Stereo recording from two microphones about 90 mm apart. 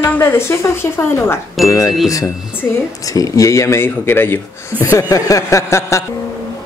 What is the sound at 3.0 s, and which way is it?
Speech, 40° left (ahead or behind).